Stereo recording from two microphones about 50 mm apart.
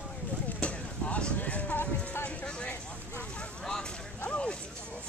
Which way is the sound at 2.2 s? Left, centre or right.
Left.